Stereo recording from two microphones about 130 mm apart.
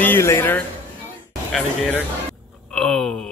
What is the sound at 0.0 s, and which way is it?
Speech, 20° left (ahead or behind).